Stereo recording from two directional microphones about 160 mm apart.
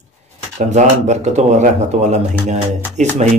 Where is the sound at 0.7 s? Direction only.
45° right (ahead or behind).